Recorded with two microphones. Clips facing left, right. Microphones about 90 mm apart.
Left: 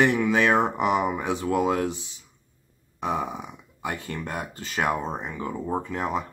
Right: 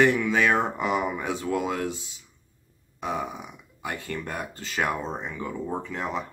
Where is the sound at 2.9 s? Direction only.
25° left (ahead or behind).